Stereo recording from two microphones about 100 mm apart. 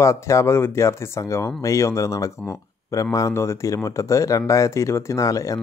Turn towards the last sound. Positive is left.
turn(degrees=35)  # may be behind; listen again after turning